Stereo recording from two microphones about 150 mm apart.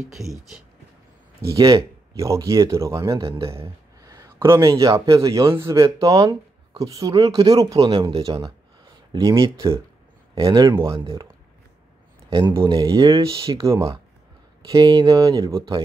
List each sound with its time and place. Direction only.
0.1 s speech: centre (ahead or behind)
1.4 s speech: 20° right (ahead or behind)
3.3 s speech: 40° right (ahead or behind)
4.0 s a sound: 20° right (ahead or behind)
5.0 s speech: 20° right (ahead or behind)
10.3 s speech: 35° right (ahead or behind)
12.3 s speech: 35° right (ahead or behind)